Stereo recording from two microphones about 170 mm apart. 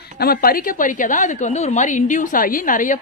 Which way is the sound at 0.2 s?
60° left (ahead or behind).